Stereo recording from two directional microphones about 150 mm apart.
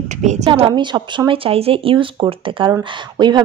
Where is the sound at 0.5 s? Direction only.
30° right (ahead or behind).